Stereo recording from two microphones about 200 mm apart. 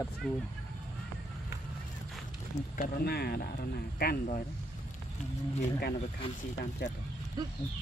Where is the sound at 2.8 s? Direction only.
50° left (ahead or behind).